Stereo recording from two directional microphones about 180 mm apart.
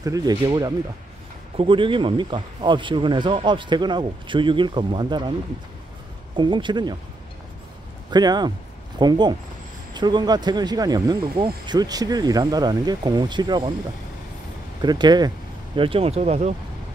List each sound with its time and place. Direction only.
0.0 s speech: 20° right (ahead or behind)
6.3 s speech: 25° right (ahead or behind)
8.1 s speech: 25° right (ahead or behind)
14.8 s speech: 25° right (ahead or behind)